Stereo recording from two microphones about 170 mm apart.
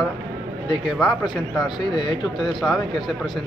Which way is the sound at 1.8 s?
25° left (ahead or behind).